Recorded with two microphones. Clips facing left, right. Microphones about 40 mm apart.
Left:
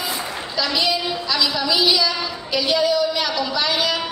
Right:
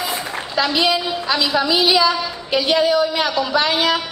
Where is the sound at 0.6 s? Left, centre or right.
Right.